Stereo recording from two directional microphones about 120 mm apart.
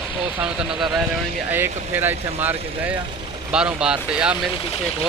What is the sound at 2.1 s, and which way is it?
Speech, 65° right (ahead or behind).